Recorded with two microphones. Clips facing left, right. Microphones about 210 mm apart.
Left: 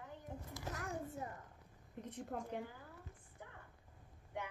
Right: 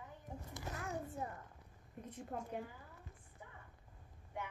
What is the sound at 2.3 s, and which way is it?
Speech, 60° left (ahead or behind).